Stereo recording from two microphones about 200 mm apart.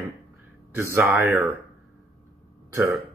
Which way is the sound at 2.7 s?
15° right (ahead or behind).